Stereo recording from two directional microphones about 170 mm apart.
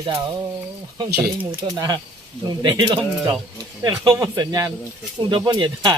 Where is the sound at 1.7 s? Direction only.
25° right (ahead or behind).